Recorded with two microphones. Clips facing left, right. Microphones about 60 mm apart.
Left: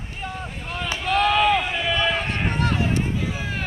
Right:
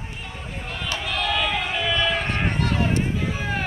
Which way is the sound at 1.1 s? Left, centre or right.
Left.